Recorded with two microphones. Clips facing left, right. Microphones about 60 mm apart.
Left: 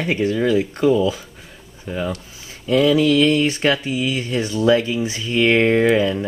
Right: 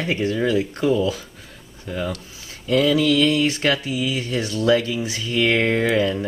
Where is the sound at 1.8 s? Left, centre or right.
Centre.